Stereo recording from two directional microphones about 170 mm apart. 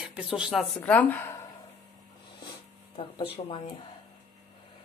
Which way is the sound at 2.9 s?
35° left (ahead or behind).